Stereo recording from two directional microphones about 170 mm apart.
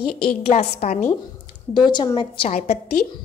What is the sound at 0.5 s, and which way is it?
Speech, 40° left (ahead or behind).